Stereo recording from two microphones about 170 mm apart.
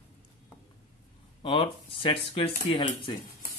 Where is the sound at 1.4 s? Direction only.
30° left (ahead or behind).